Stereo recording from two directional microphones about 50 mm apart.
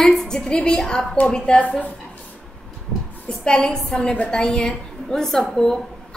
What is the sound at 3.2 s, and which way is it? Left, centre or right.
A woman's voice, centre.